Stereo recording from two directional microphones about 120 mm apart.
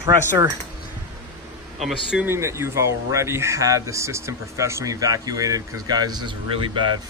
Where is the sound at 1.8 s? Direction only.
Centre (ahead or behind).